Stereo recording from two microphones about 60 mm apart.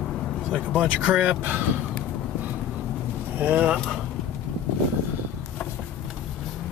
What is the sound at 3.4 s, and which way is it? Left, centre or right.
Speech, right.